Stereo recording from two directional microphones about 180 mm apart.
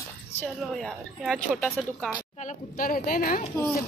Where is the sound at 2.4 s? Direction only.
45° left (ahead or behind).